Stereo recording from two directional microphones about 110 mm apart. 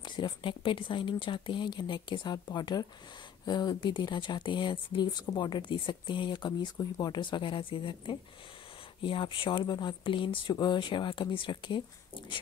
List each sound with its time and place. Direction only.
0.0 s speech: 45° left (ahead or behind)